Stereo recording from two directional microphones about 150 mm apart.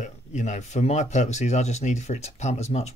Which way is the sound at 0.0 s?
50° left (ahead or behind).